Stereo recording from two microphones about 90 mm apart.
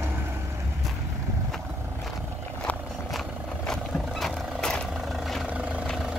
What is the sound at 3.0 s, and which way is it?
Vehicle, 5° left (ahead or behind).